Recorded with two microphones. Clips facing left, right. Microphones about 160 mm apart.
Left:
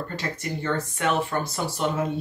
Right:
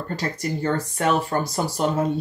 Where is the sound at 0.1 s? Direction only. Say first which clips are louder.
Right 4 dB; 40° right (ahead or behind).